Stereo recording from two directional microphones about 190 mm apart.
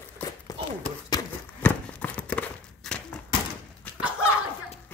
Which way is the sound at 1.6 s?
5° left (ahead or behind).